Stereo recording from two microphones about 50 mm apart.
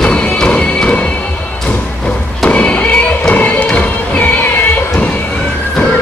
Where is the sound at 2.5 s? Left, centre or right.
Left.